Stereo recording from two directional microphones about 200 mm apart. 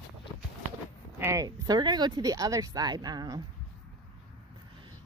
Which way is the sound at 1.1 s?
15° right (ahead or behind).